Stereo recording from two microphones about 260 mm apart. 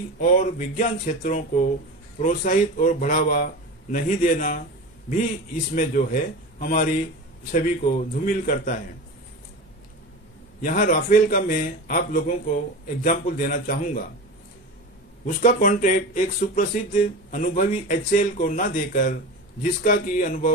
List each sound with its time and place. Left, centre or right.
0.2 s speech: left
5.8 s speech: left
10.6 s speech: left
15.2 s speech: left